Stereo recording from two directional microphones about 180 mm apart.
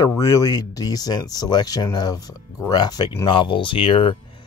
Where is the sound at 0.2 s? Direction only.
20° left (ahead or behind).